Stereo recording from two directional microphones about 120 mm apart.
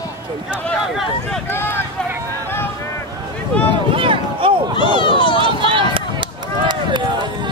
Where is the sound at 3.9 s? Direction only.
45° right (ahead or behind).